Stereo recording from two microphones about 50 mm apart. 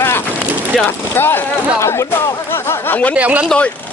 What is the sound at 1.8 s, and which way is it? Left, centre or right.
Speech, left.